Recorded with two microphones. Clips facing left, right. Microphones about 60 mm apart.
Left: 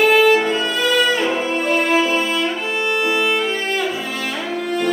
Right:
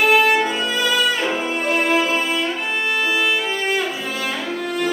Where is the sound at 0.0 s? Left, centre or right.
Centre.